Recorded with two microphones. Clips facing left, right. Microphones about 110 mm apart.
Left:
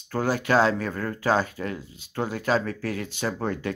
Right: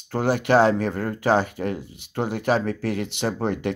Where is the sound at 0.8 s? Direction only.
25° right (ahead or behind).